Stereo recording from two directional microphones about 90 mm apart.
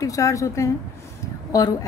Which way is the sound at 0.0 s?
40° left (ahead or behind).